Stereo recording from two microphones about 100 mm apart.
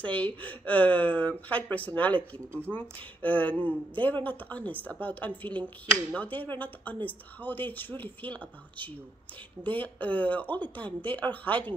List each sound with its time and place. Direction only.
0.0 s speech: 15° left (ahead or behind)
2.7 s speech: 15° right (ahead or behind)
3.2 s speech: 15° left (ahead or behind)
3.5 s a man's voice: 60° right (ahead or behind)
4.0 s speech: 15° left (ahead or behind)
9.6 s speech: 15° left (ahead or behind)